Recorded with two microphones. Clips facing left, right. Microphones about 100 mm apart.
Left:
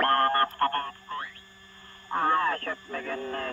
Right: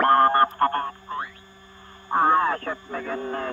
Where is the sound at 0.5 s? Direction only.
10° right (ahead or behind).